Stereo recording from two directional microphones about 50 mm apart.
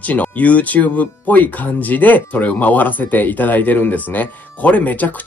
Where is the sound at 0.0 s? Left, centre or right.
Left.